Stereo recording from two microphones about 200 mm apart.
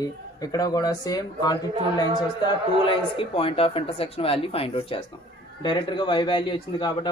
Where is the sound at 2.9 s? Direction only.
25° left (ahead or behind).